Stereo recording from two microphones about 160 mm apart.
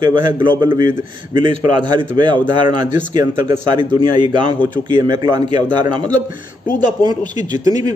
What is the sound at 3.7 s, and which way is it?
Speech, 30° right (ahead or behind).